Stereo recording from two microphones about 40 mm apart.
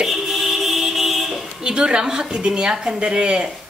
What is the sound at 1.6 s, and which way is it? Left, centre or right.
Speech, right.